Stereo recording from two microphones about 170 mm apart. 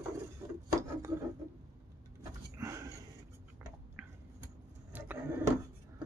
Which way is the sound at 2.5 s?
20° right (ahead or behind).